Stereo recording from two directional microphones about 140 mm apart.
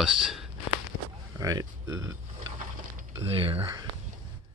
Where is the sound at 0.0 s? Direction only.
5° right (ahead or behind).